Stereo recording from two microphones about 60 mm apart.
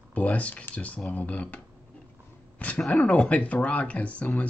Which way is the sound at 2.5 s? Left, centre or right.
Left.